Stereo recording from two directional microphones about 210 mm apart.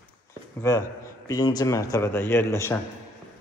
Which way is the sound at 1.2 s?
15° left (ahead or behind).